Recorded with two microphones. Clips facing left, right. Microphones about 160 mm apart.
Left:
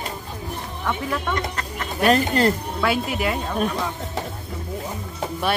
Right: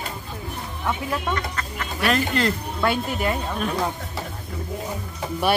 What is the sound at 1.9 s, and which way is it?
Speech, 40° left (ahead or behind).